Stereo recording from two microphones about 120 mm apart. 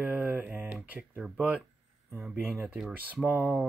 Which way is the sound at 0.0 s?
15° right (ahead or behind).